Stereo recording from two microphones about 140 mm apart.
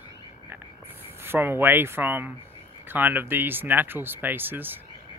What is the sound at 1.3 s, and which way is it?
Speech, 15° right (ahead or behind).